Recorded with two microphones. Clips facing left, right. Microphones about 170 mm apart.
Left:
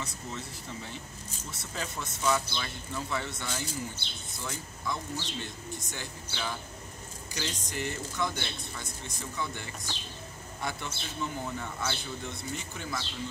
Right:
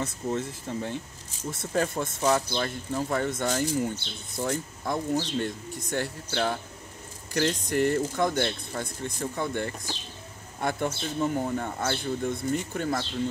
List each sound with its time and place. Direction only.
0.0 s speech: 50° right (ahead or behind)